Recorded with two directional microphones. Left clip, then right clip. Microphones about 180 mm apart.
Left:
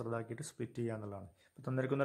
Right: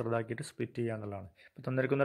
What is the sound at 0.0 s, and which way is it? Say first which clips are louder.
A man's voice: right 7 dB; 20° right (ahead or behind).